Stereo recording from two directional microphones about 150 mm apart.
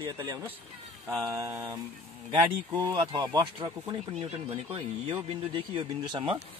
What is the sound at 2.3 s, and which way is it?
Speech, 30° right (ahead or behind).